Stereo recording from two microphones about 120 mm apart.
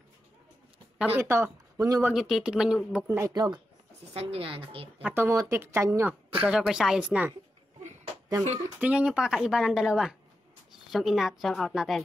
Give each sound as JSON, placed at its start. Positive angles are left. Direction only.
{"t": 0.9, "sound": "speech", "side_deg": -15}
{"t": 1.2, "sound": "speech", "side_deg": -25}
{"t": 2.1, "sound": "speech", "side_deg": 0}
{"t": 3.1, "sound": "speech", "side_deg": -30}
{"t": 4.1, "sound": "a woman's voice", "side_deg": -55}
{"t": 5.0, "sound": "speech", "side_deg": -20}
{"t": 6.4, "sound": "speech", "side_deg": -5}
{"t": 8.7, "sound": "speech", "side_deg": -10}